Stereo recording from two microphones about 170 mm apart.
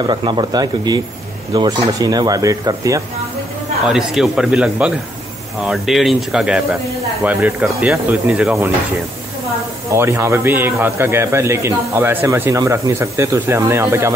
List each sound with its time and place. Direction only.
0.0 s speech: 25° right (ahead or behind)
3.9 s a man's voice: centre (ahead or behind)
9.9 s a man's voice: 15° right (ahead or behind)